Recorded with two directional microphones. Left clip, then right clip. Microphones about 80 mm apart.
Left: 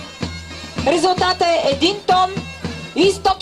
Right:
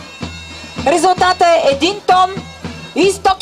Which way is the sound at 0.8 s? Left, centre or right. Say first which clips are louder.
Right 4 dB; right.